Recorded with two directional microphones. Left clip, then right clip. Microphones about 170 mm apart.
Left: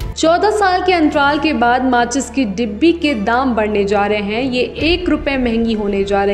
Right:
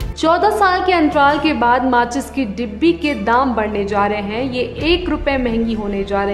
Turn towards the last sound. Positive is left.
turn(degrees=15)  # may be behind; listen again after turning